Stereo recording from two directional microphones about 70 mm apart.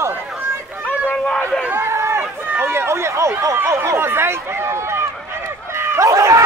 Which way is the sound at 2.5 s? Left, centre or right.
Right.